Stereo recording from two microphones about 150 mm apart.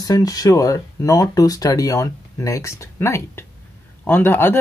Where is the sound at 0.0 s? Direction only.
25° left (ahead or behind).